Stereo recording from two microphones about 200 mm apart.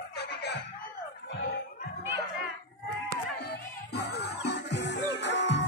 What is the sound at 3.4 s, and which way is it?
Music, 55° left (ahead or behind).